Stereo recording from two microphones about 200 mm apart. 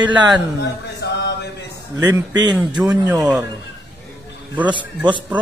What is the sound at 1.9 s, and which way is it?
A man's voice, 10° right (ahead or behind).